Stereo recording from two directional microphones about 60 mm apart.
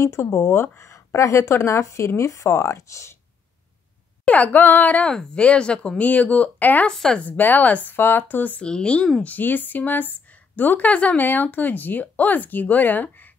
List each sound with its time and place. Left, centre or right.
0.5 s speech: left
0.8 s speech: left
4.2 s a woman's voice: left
5.0 s a woman's voice: centre
6.9 s speech: centre
7.2 s speech: left
8.6 s speech: centre
9.2 s a woman's voice: left